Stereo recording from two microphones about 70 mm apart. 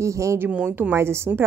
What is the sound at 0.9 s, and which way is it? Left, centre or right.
Speech, right.